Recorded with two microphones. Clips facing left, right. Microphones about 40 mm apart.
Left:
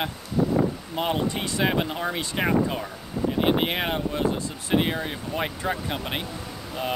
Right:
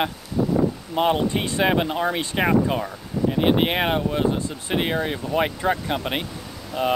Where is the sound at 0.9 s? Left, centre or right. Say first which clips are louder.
Right 6 dB; right.